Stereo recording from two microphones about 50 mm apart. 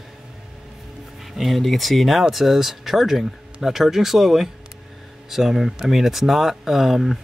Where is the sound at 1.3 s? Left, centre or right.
Centre.